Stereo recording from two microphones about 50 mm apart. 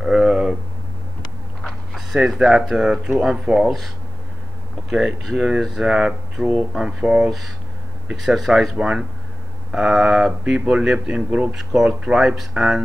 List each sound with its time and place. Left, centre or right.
0.0 s a sound: centre
2.0 s speech: centre
4.8 s speech: centre
7.2 s speech: centre
8.7 s speech: centre
9.7 s speech: centre
10.6 s speech: right